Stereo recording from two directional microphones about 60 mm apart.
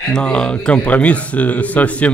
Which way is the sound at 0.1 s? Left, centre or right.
Centre.